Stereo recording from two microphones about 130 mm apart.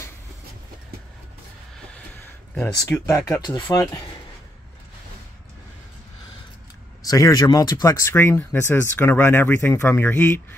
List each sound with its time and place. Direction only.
2.6 s speech: 25° left (ahead or behind)
3.4 s speech: 35° left (ahead or behind)
7.1 s speech: 30° left (ahead or behind)